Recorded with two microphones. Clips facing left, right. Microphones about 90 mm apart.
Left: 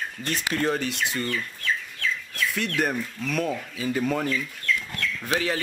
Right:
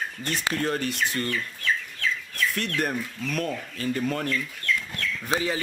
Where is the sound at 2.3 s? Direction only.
Centre (ahead or behind).